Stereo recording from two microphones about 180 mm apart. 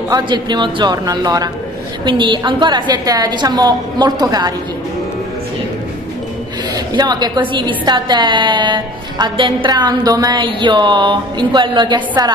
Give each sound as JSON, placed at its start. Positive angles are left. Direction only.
{"t": 0.1, "sound": "a woman's voice", "side_deg": -25}
{"t": 6.9, "sound": "a woman's voice", "side_deg": -25}